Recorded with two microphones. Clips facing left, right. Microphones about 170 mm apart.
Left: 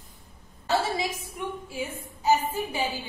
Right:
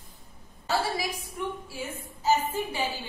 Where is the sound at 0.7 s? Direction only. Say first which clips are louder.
Left 2 dB; 25° left (ahead or behind).